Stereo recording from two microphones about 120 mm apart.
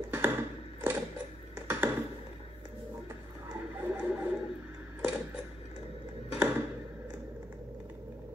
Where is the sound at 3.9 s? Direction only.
15° right (ahead or behind).